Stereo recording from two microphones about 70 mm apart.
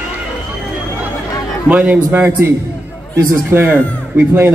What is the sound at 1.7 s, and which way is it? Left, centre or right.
Speech, right.